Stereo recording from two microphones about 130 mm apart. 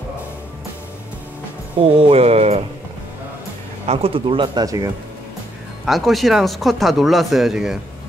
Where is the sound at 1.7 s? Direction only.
50° right (ahead or behind).